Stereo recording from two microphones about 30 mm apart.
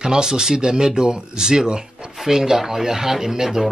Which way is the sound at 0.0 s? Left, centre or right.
Right.